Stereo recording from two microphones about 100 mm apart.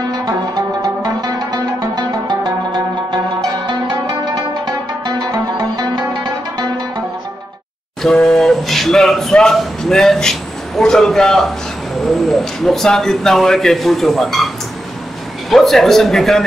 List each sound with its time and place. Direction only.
0.2 s music: 40° right (ahead or behind)
5.0 s music: 40° right (ahead or behind)
8.0 s speech: 5° left (ahead or behind)
15.5 s speech: centre (ahead or behind)